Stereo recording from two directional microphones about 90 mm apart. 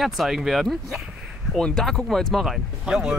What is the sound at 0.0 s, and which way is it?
Speech, centre (ahead or behind).